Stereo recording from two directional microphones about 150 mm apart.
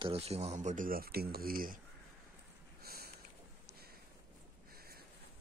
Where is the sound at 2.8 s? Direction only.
90° right.